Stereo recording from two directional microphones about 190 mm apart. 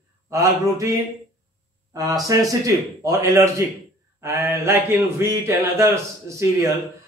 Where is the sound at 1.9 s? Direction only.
20° right (ahead or behind).